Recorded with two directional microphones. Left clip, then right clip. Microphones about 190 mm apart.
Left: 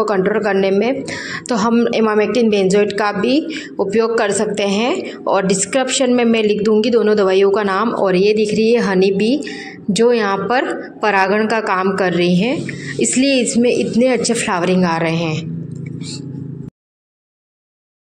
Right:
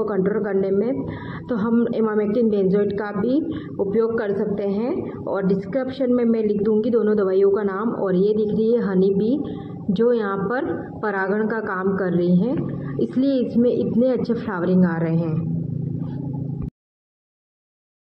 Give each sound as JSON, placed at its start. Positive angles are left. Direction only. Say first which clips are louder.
{"t": 0.6, "sound": "a woman's voice", "louder": "left 6 dB", "side_deg": 40}
{"t": 4.0, "sound": "a man's voice", "louder": "left 7 dB", "side_deg": 15}
{"t": 4.6, "sound": "a woman's voice", "louder": "left 7 dB", "side_deg": 40}